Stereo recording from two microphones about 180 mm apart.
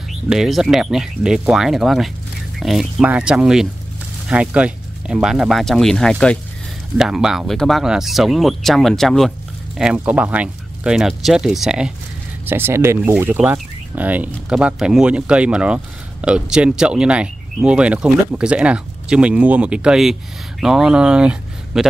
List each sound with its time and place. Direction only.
0.1 s speech: centre (ahead or behind)